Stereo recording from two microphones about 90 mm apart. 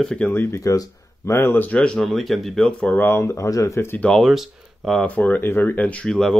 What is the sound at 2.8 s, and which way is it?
Speech, 20° left (ahead or behind).